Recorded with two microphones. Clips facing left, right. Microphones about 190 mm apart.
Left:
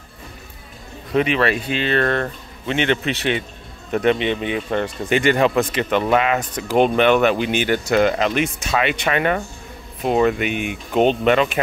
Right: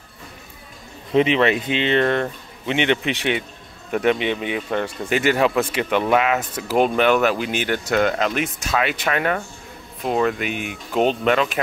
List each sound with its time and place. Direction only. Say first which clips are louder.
1.1 s speech: right 2 dB; 25° right (ahead or behind); by 11.6 s centre (ahead or behind)